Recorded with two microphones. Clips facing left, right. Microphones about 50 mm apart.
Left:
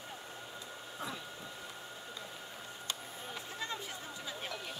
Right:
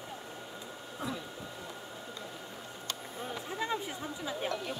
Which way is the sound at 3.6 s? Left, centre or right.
Centre.